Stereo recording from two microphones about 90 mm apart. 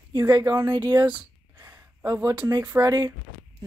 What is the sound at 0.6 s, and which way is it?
Speech, 55° right (ahead or behind).